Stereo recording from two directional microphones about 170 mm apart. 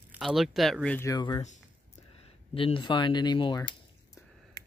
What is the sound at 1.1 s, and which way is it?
Speech, 25° left (ahead or behind).